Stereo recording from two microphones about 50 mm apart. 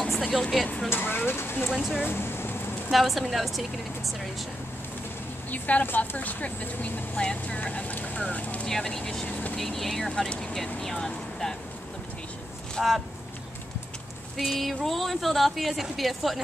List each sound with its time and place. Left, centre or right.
0.1 s a sound: centre
0.4 s speech: centre
0.9 s speech: left
1.7 s speech: centre
2.0 s a sound: left
2.9 s a woman's voice: centre
5.5 s speech: left
8.6 s speech: centre
9.2 s speech: left
9.6 s speech: centre
11.1 s vehicle: centre
12.8 s speech: centre
14.6 s speech: centre